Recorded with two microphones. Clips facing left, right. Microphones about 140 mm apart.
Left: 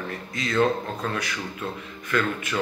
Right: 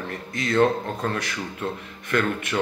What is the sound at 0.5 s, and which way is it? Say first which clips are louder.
Speech: right 2 dB; 35° right (ahead or behind).